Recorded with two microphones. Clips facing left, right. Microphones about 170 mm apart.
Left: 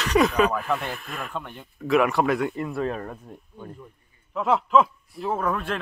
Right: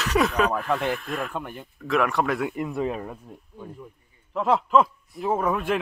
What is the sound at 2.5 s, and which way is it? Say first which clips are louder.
Speech: even; 15° right (ahead or behind).